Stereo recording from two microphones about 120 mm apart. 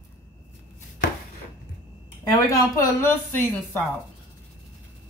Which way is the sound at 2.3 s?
30° left (ahead or behind).